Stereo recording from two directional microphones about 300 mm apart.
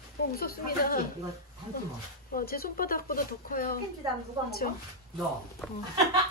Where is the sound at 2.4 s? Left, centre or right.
Left.